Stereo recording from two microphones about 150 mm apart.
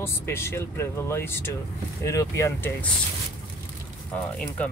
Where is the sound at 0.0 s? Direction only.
15° left (ahead or behind).